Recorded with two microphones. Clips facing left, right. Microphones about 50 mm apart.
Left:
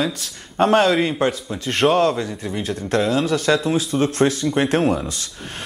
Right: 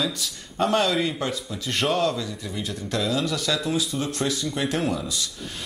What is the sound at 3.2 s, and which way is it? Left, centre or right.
A man's voice, left.